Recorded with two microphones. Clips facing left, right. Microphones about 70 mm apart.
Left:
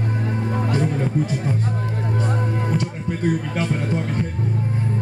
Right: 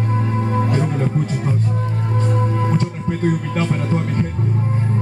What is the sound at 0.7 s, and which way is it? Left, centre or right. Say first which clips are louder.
Music: right 2 dB; right.